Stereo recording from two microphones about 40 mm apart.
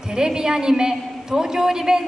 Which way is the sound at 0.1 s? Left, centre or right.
Centre.